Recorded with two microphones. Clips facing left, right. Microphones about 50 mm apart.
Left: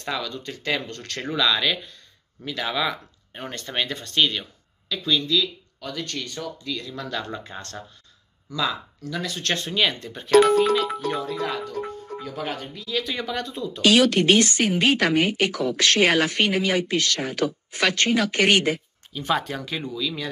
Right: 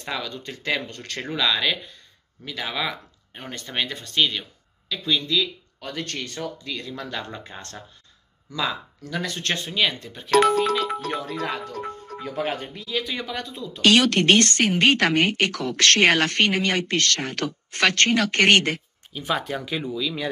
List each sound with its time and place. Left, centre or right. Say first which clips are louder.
0.0 s speech: left 1 dB; centre
1.3 s speech: left 1 dB; centre
5.0 s speech: left 1 dB; right
6.9 s speech: left 1 dB; centre
9.0 s speech: right 1 dB; right
9.7 s speech: left 1 dB; centre
11.1 s speech: left 2 dB; centre
12.2 s speech: right 4 dB; right
12.9 s speech: left 1 dB; centre